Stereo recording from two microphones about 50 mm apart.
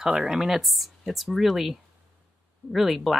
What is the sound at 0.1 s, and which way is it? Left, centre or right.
Speech, centre.